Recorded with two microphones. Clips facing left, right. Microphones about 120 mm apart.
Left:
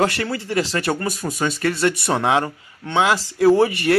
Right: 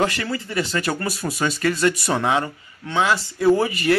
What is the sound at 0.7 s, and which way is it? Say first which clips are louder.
Speech: left 2 dB; 30° left (ahead or behind).